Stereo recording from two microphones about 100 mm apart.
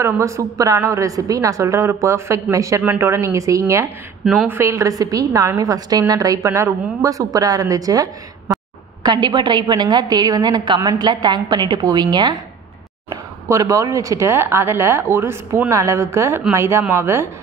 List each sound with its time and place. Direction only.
0.0 s a woman's voice: 30° right (ahead or behind)
4.3 s a woman's voice: 20° right (ahead or behind); by 8.5 s 35° right (ahead or behind)
9.0 s a woman's voice: 50° right (ahead or behind)
13.1 s speech: 35° right (ahead or behind)